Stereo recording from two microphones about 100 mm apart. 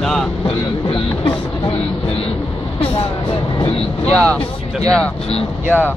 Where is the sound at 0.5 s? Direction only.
60° left (ahead or behind).